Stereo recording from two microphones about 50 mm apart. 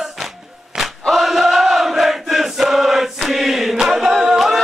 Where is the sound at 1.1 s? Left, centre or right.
Centre.